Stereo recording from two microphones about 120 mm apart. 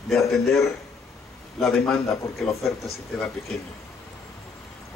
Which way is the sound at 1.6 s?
5° left (ahead or behind).